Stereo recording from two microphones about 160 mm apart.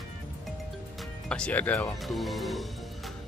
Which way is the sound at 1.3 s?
10° left (ahead or behind).